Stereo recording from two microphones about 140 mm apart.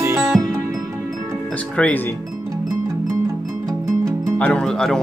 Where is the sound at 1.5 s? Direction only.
10° left (ahead or behind).